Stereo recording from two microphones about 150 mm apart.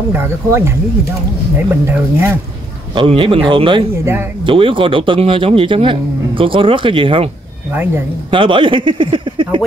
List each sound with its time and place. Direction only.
0.1 s speech: 15° right (ahead or behind)
1.9 s speech: 15° right (ahead or behind)
2.9 s speech: 35° right (ahead or behind)
3.9 s speech: 15° right (ahead or behind)
4.5 s speech: 35° right (ahead or behind)
7.7 s speech: 10° right (ahead or behind)
8.3 s speech: 35° right (ahead or behind)